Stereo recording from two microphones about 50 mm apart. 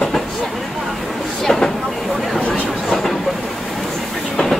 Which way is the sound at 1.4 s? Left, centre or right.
Centre.